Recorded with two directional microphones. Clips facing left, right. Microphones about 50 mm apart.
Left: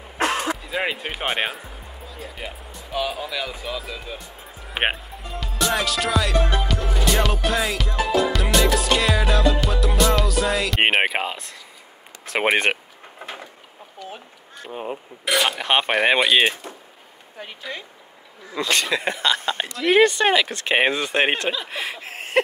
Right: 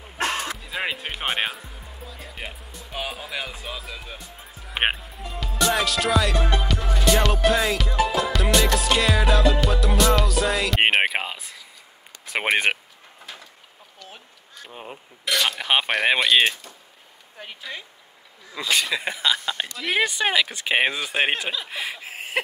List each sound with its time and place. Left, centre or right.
0.2 s a sound: left
0.6 s speech: centre
13.2 s a sound: left
14.0 s honk: centre
14.7 s speech: centre
15.6 s speech: centre
19.4 s speech: centre
19.8 s speech: centre